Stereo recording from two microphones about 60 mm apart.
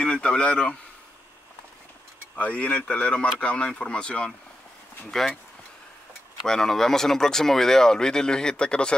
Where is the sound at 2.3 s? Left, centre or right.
Left; by 5.4 s centre.